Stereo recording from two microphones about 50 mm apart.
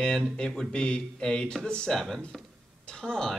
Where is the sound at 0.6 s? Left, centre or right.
Centre.